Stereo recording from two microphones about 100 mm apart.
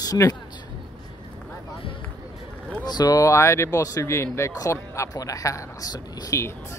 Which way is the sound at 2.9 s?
40° left (ahead or behind).